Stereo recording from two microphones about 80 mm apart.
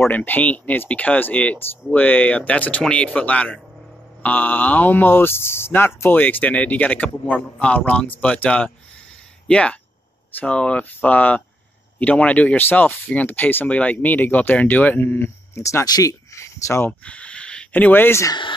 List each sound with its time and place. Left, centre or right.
0.0 s a man's voice: left
17.0 s speech: centre